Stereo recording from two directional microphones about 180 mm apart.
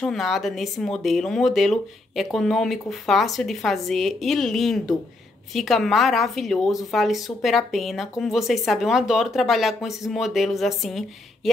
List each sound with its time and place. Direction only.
0.0 s speech: centre (ahead or behind)